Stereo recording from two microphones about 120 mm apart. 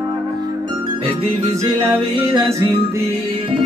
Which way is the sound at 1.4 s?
25° right (ahead or behind).